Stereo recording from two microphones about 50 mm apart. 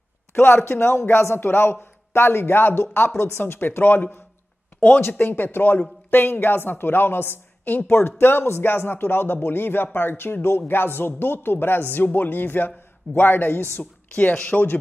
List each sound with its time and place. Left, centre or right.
0.3 s speech: left
14.1 s speech: left